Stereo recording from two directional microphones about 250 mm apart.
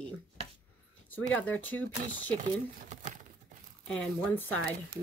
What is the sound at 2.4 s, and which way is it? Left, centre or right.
Speech, right.